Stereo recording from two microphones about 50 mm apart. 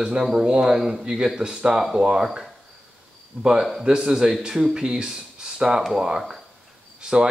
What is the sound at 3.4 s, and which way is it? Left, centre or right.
Speech, centre.